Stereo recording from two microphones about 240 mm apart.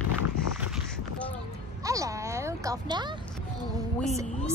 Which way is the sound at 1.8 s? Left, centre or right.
Centre.